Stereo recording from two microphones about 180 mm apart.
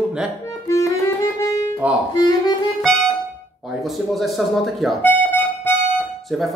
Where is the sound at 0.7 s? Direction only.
15° left (ahead or behind).